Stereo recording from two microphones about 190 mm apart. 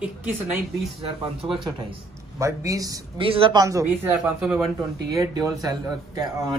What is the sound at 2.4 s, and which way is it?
Speech, 15° right (ahead or behind).